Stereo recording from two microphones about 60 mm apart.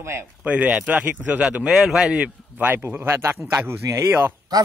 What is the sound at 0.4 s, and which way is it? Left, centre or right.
Speech, right.